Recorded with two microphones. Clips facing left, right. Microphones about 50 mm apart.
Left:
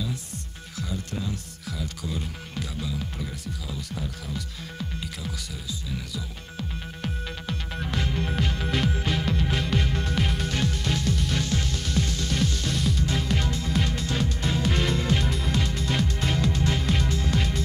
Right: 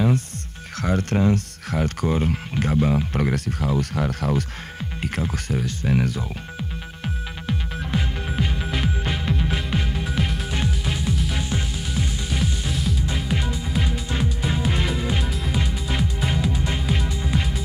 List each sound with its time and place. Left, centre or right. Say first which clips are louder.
0.7 s speech: right 11 dB; right
5.0 s speech: right 9 dB; right
7.0 s music: right 1 dB; centre
10.5 s music: right 1 dB; centre